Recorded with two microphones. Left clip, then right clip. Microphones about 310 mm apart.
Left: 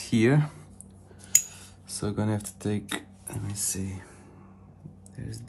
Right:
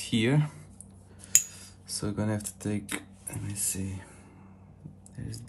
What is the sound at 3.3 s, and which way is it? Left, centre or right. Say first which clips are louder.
Speech: left 2 dB; centre.